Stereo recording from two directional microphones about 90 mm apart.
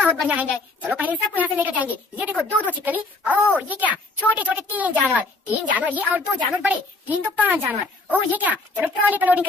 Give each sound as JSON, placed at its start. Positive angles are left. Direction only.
{"t": 0.0, "sound": "a woman's voice", "side_deg": -15}